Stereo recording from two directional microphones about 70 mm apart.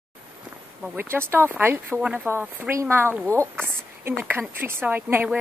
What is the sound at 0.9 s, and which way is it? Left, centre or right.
Speech, right.